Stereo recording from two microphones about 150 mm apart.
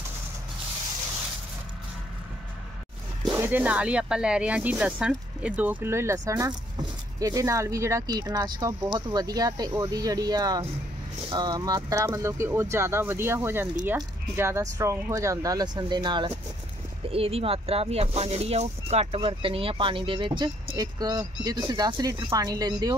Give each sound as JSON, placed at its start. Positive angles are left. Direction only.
{"t": 3.3, "sound": "speech", "side_deg": -15}